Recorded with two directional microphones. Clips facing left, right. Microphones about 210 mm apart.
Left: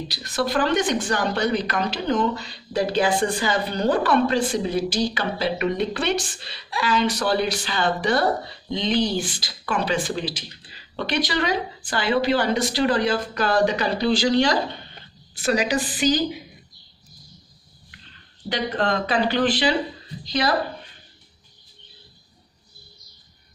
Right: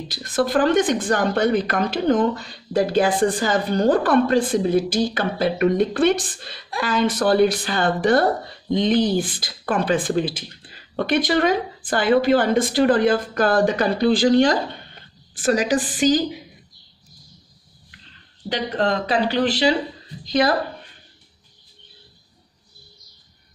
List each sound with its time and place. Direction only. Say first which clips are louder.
0.1 s speech: right 5 dB; 50° right (ahead or behind)
18.5 s speech: right 2 dB; 35° right (ahead or behind)
20.2 s speech: right 5 dB; 50° right (ahead or behind)